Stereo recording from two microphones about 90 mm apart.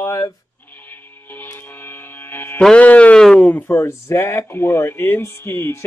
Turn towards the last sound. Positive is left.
turn(degrees=30)  # may be behind; listen again after turning